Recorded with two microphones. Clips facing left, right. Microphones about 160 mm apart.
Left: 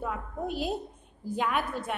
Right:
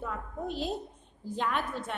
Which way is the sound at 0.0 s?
10° left (ahead or behind).